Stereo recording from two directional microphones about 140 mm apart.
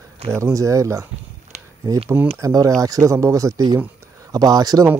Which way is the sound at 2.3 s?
25° right (ahead or behind).